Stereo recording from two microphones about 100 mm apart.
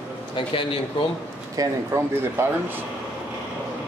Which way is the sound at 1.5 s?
30° right (ahead or behind).